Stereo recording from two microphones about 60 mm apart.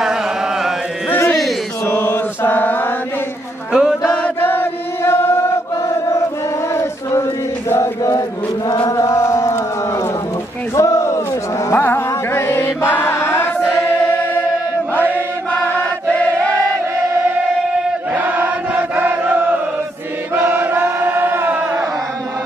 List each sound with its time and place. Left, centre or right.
1.1 s a sound: left
1.9 s mantra: left
3.7 s chant: centre
4.1 s chant: left
8.6 s chant: left
9.0 s chant: left
10.8 s a sound: left
11.7 s music: left
18.1 s chant: right